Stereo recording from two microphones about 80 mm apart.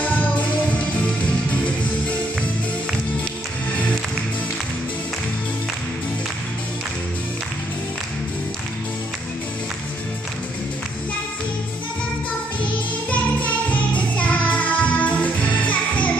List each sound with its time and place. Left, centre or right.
0.0 s music: centre
13.1 s music: centre